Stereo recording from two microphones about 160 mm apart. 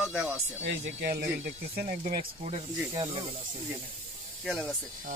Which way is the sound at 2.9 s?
30° right (ahead or behind).